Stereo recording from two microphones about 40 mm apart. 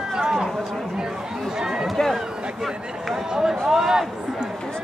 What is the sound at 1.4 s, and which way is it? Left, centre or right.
Chatter, centre.